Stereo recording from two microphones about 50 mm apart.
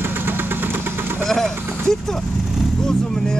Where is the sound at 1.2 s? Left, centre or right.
Centre.